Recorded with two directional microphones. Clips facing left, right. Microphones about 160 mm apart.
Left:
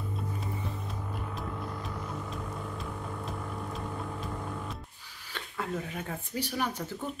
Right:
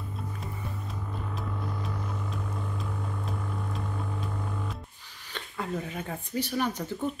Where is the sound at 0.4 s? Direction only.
Centre (ahead or behind).